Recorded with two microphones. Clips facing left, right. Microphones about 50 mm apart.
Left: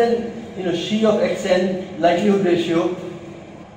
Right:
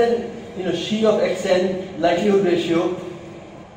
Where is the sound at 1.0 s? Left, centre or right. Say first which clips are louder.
Even; centre.